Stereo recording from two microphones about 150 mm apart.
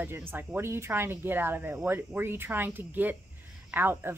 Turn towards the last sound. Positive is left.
turn(degrees=-15)  # may be behind; listen again after turning